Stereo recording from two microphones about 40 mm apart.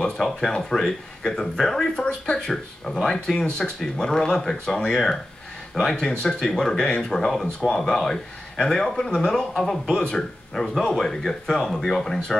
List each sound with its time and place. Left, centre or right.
0.5 s speech: centre